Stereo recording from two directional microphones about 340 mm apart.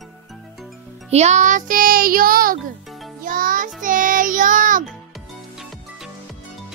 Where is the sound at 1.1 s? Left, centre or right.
Centre.